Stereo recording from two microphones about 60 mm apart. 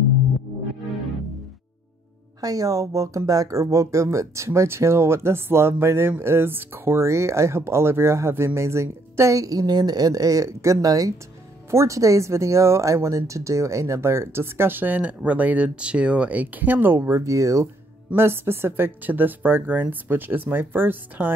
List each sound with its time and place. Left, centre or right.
2.4 s speech: right
11.7 s speech: right
17.1 s speech: right
18.1 s speech: right